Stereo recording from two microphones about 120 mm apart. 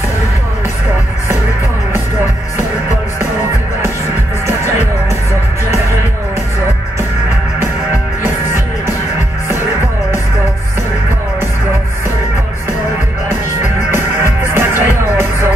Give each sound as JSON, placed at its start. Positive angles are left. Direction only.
{"t": 13.9, "sound": "music", "side_deg": -20}